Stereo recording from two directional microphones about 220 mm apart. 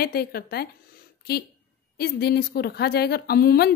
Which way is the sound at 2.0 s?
45° left (ahead or behind).